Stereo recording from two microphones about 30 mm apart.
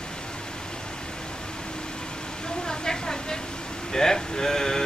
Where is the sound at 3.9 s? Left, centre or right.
Centre.